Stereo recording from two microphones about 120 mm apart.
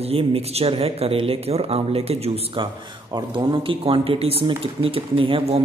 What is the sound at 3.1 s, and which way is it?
A man's voice, 40° right (ahead or behind).